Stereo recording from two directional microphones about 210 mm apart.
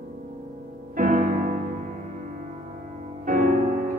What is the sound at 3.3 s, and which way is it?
Music, 40° right (ahead or behind).